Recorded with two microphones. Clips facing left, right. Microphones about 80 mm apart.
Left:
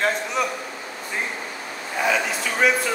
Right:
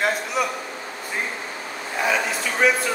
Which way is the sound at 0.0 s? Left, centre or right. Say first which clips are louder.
Even; centre.